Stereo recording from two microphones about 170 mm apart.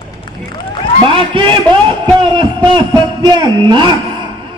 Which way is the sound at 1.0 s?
30° right (ahead or behind).